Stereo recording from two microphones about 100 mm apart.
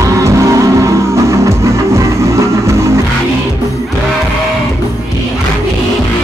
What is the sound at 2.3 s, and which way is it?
Music, 30° right (ahead or behind).